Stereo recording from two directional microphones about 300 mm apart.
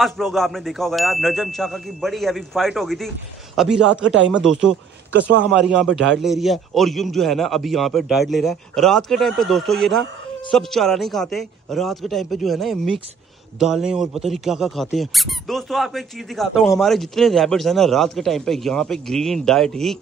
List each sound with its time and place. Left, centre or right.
0.0 s speech: centre